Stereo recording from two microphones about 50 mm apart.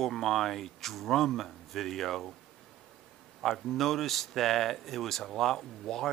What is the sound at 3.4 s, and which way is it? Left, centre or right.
Speech, centre.